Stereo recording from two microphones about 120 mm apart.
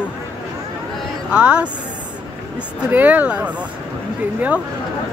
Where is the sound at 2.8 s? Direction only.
15° right (ahead or behind).